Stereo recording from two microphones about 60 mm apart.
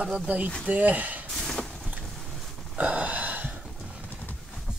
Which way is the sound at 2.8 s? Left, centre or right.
Right.